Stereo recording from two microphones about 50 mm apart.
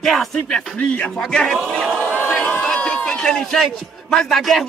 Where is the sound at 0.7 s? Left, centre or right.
Left.